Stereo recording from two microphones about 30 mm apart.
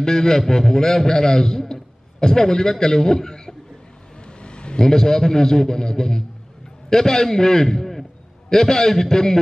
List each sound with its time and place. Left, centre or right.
0.0 s a man's voice: centre
4.4 s a sound: left
4.7 s a man's voice: centre